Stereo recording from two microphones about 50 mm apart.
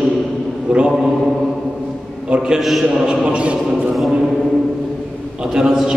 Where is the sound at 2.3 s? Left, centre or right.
Centre.